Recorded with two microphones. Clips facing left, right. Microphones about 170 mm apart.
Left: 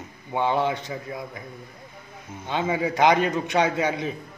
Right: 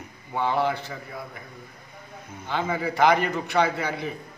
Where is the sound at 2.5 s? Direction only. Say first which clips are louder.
Left 2 dB; 20° left (ahead or behind).